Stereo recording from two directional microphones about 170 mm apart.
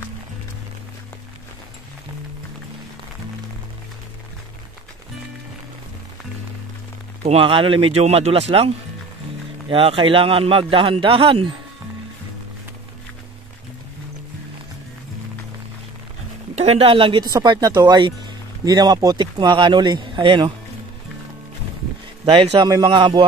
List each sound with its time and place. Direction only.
7.2 s speech: 30° right (ahead or behind)
16.5 s speech: 35° right (ahead or behind)
22.3 s speech: 30° right (ahead or behind)